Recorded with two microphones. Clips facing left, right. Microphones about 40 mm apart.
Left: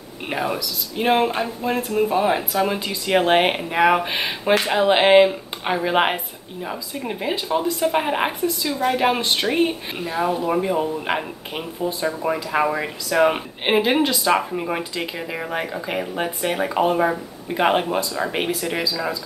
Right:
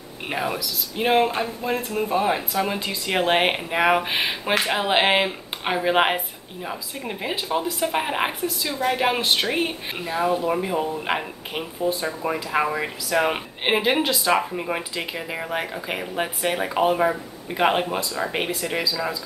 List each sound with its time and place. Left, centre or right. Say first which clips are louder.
0.3 s speech: left 2 dB; centre